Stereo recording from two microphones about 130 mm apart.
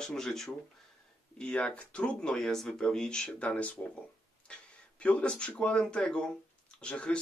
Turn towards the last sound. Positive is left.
turn(degrees=10)  # may be behind; listen again after turning